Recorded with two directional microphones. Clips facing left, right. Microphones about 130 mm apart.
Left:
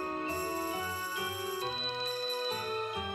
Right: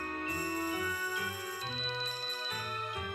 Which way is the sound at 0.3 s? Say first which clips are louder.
Left 1 dB; 30° left (ahead or behind).